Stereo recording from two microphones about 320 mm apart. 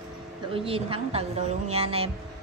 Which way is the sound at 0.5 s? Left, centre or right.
Centre.